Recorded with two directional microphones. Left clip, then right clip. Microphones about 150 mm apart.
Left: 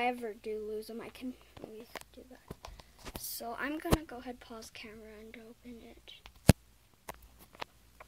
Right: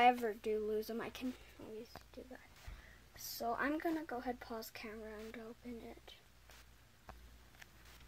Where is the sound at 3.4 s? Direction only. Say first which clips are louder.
Right 1 dB; centre (ahead or behind).